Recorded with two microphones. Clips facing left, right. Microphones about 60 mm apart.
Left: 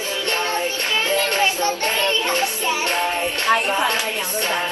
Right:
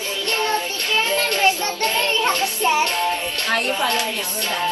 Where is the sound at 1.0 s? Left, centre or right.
Left.